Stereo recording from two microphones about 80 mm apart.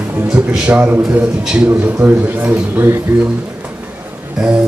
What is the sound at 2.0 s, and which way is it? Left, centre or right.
Speech, right.